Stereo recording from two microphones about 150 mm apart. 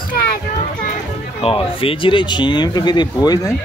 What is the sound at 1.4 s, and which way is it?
Speech, 40° left (ahead or behind).